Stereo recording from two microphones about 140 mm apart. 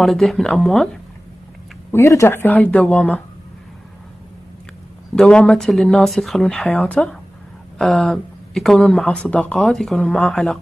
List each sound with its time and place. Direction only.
0.0 s speech: centre (ahead or behind)
1.9 s speech: 20° left (ahead or behind)
5.1 s speech: 5° left (ahead or behind)